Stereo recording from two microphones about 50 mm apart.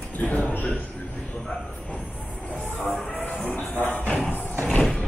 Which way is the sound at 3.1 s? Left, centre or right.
Left.